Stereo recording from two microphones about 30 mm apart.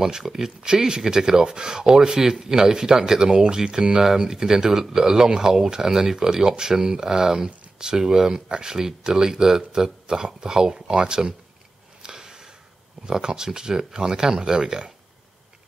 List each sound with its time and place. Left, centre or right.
0.0 s speech: centre
12.0 s a sound: right
13.0 s speech: right